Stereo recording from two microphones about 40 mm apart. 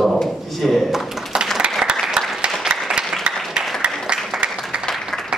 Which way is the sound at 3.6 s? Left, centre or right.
Centre.